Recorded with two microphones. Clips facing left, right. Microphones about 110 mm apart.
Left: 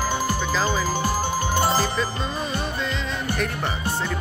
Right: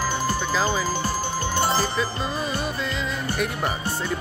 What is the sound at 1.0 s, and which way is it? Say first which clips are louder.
Music: left 2 dB; 45° left (ahead or behind).